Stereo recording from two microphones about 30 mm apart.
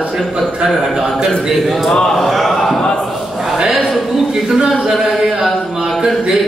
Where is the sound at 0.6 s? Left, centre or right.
Centre.